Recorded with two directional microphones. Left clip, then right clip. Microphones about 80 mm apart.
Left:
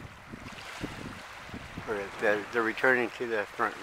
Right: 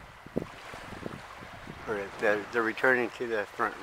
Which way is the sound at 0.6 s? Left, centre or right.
Left.